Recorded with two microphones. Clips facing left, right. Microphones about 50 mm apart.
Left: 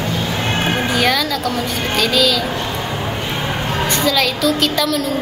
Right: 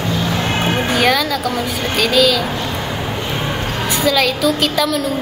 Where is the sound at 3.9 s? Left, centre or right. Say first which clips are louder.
Right 3 dB; centre.